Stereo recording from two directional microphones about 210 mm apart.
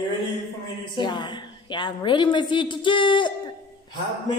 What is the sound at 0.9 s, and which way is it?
A woman's voice, 20° left (ahead or behind).